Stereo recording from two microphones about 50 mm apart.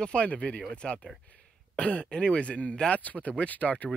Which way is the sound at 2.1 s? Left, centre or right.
Left.